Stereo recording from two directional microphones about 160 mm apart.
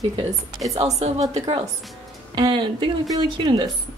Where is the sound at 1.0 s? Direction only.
45° right (ahead or behind).